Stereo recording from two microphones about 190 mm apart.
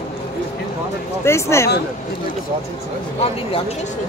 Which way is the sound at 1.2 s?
15° left (ahead or behind).